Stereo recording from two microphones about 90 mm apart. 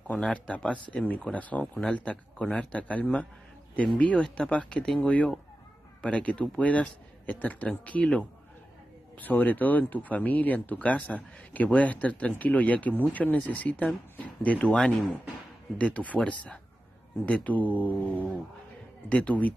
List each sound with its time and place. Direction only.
0.0 s speech: 15° left (ahead or behind)